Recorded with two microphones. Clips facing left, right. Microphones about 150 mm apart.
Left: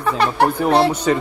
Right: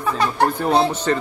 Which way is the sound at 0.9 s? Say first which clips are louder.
Left 3 dB; 10° left (ahead or behind).